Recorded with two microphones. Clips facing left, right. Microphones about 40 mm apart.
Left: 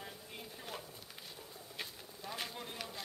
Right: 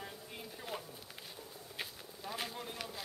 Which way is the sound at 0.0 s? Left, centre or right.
Centre.